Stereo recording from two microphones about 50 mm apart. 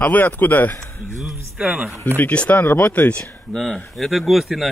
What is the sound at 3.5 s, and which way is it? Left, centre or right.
Speech, centre.